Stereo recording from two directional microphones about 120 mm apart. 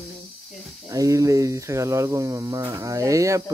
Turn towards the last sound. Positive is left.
turn(degrees=-25)  # may be behind; listen again after turning